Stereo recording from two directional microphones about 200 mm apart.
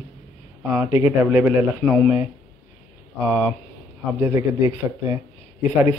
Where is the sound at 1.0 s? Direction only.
10° right (ahead or behind).